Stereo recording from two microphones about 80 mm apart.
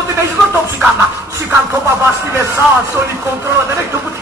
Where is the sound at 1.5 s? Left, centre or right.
Right.